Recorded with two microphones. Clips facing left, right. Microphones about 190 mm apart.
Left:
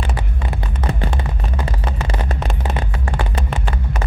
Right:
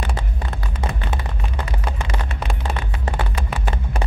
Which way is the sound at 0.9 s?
35° left (ahead or behind).